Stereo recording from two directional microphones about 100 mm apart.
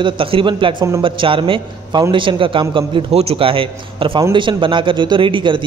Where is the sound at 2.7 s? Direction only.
75° right (ahead or behind).